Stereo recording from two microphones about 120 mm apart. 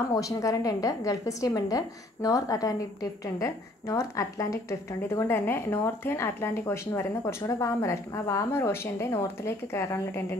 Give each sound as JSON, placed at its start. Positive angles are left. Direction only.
{"t": 0.1, "sound": "a woman's voice", "side_deg": 30}